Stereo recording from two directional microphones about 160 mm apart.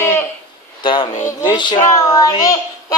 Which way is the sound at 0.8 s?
30° left (ahead or behind).